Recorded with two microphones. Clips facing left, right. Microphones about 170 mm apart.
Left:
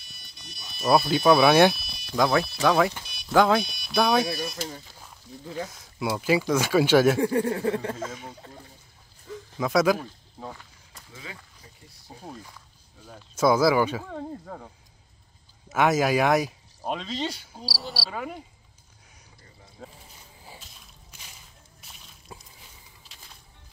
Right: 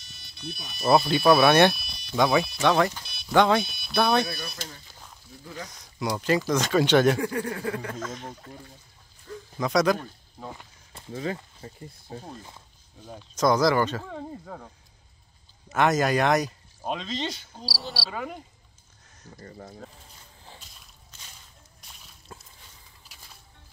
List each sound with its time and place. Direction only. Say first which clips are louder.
0.0 s a sound: right 11 dB; 65° right (ahead or behind)
0.7 s speech: even; centre (ahead or behind)
5.4 s a sound: left 6 dB; 25° left (ahead or behind)
5.7 s speech: right 2 dB; 5° left (ahead or behind)
7.2 s a sound: left 5 dB; 25° left (ahead or behind)
8.1 s speech: right 2 dB; 10° left (ahead or behind)
11.6 s speech: right 11 dB; 50° right (ahead or behind)
13.4 s speech: left 1 dB; 5° left (ahead or behind)
15.7 s speech: left 1 dB; 5° left (ahead or behind)
19.3 s speech: right 14 dB; 55° right (ahead or behind)
19.8 s squish: even; 5° left (ahead or behind)
21.8 s whip: left 1 dB; centre (ahead or behind)